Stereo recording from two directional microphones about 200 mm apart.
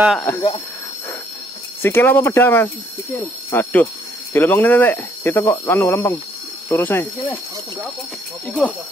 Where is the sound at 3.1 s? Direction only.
10° left (ahead or behind).